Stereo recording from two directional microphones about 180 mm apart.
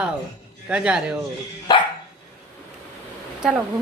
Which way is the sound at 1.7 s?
25° left (ahead or behind).